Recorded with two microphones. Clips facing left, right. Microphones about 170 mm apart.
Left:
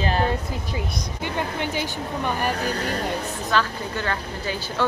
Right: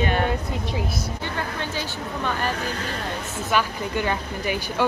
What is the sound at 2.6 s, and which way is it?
Speech, 40° left (ahead or behind).